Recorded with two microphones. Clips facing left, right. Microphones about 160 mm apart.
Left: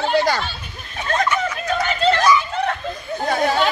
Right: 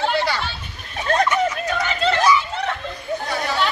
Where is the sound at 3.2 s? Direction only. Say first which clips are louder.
Left 6 dB; 50° left (ahead or behind).